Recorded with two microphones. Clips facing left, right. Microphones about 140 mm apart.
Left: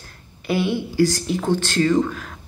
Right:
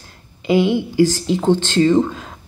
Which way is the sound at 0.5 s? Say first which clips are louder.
Right 6 dB; 20° right (ahead or behind).